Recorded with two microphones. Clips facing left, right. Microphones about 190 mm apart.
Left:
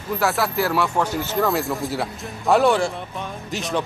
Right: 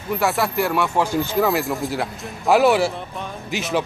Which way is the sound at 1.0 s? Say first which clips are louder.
Right 2 dB; 10° right (ahead or behind).